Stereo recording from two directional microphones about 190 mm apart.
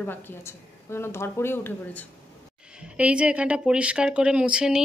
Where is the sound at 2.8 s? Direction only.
5° right (ahead or behind).